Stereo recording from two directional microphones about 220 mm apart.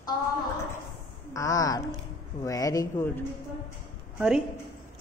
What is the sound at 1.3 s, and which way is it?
A woman's voice, 15° left (ahead or behind).